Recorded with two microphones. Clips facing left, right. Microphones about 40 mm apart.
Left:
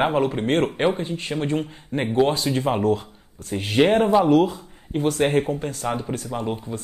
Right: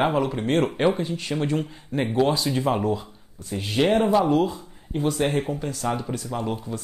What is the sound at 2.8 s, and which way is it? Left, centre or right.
Speech, left.